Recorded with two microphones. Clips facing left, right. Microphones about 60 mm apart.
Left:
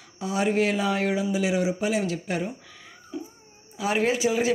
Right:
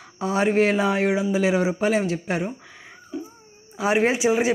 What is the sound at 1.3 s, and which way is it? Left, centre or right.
Speech, right.